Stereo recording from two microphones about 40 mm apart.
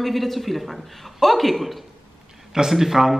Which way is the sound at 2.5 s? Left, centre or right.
Centre.